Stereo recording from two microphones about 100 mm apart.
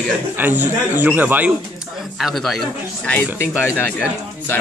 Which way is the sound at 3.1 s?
20° left (ahead or behind).